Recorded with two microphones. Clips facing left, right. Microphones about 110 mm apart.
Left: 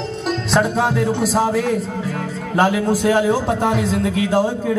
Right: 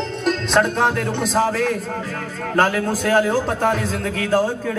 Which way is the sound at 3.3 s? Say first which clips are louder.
Left 1 dB; 50° right (ahead or behind).